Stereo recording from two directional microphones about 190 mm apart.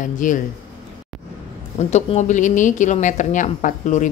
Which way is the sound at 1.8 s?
35° left (ahead or behind).